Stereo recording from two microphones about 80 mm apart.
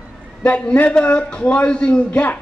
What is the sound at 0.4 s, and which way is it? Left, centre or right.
A man's voice, centre.